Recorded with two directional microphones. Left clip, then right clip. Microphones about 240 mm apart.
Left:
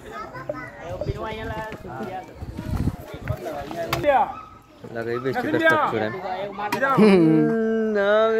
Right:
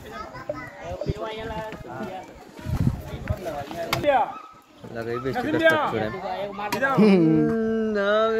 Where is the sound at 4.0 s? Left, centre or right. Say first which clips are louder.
Left 2 dB; centre.